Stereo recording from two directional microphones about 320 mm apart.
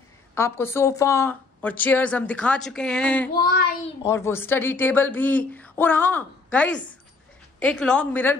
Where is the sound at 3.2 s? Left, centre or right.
Left.